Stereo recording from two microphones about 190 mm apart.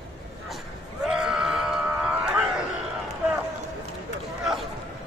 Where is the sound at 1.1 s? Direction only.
5° right (ahead or behind).